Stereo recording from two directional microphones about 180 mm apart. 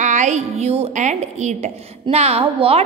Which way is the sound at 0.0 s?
40° right (ahead or behind).